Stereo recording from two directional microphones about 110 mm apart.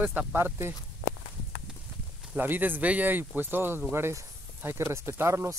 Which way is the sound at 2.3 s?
15° right (ahead or behind).